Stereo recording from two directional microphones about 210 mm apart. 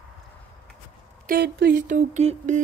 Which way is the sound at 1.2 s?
50° right (ahead or behind).